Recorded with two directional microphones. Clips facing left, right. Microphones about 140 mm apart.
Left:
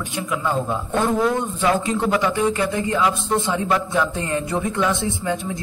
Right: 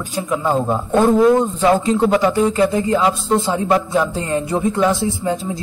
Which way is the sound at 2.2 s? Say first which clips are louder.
Right 4 dB; 35° right (ahead or behind).